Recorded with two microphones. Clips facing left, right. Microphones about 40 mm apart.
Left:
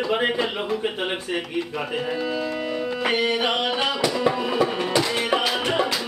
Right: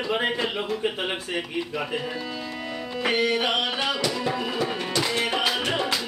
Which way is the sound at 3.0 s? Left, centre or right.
Centre.